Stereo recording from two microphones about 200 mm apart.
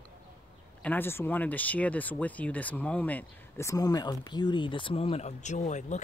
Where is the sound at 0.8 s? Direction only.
10° left (ahead or behind).